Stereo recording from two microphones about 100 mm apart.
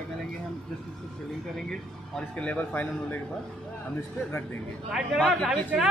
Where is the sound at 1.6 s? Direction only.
5° left (ahead or behind).